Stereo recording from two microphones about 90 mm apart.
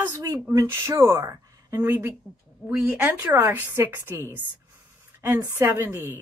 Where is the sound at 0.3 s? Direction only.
30° right (ahead or behind).